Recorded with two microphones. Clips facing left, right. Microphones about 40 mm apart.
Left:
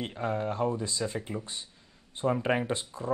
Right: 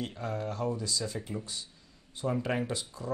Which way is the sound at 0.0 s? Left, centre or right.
Left.